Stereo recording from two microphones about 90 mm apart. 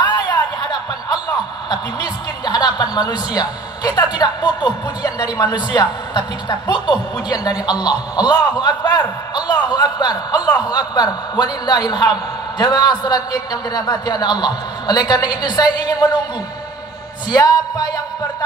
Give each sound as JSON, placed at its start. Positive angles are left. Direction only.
{"t": 0.0, "sound": "a sound", "side_deg": 50}
{"t": 1.7, "sound": "a woman's voice", "side_deg": 50}
{"t": 17.3, "sound": "a man's voice", "side_deg": 45}